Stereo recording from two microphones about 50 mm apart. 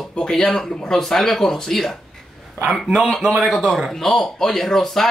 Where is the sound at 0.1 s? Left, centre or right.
Centre.